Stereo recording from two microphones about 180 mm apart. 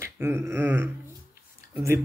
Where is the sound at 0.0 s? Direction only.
15° right (ahead or behind).